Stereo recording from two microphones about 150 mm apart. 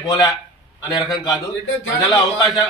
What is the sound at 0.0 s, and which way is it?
A man's voice, 25° left (ahead or behind).